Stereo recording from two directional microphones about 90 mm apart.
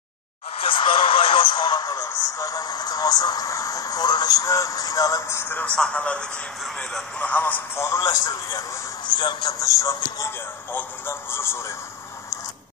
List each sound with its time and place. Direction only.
0.7 s speech: 75° left (ahead or behind); by 1.9 s 55° left (ahead or behind)
1.9 s speech: 40° left (ahead or behind)
5.4 s a man's voice: 20° left (ahead or behind); by 7.1 s 5° left (ahead or behind)
7.2 s a man's voice: 15° left (ahead or behind)
7.7 s speech: 35° left (ahead or behind)
9.0 s speech: 55° left (ahead or behind); by 10.3 s 40° left (ahead or behind)
10.7 s speech: 25° left (ahead or behind)